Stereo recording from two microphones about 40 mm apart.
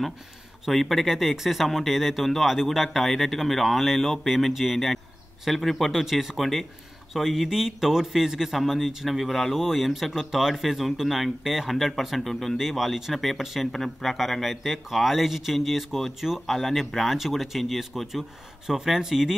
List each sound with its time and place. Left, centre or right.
0.7 s a man's voice: centre